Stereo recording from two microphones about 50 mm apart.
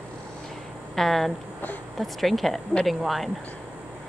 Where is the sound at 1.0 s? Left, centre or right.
Centre.